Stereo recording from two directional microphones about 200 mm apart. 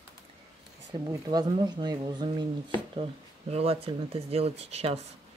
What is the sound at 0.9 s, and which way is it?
Speech, 20° right (ahead or behind).